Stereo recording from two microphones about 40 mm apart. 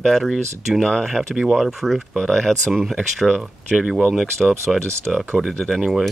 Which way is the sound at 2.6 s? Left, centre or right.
Centre.